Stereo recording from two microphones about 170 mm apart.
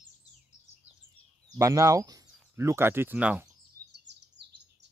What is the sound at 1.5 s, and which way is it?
Speech, 20° right (ahead or behind).